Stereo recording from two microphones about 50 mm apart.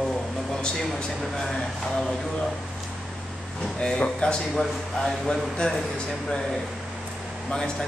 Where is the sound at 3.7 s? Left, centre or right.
Centre.